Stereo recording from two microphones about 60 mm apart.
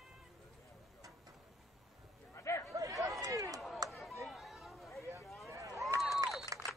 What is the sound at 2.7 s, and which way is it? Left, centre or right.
Chatter, right.